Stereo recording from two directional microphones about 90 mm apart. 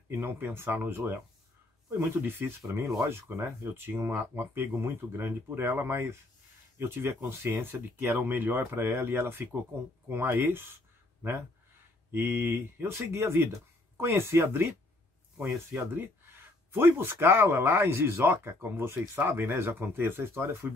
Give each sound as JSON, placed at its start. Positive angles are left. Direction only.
{"t": 0.1, "sound": "speech", "side_deg": -25}
{"t": 12.1, "sound": "speech", "side_deg": -25}
{"t": 15.3, "sound": "speech", "side_deg": -20}